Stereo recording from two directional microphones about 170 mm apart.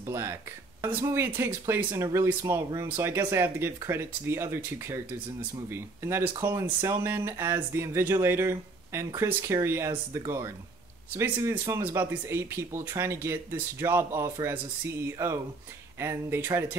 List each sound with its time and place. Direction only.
0.0 s speech: 15° right (ahead or behind)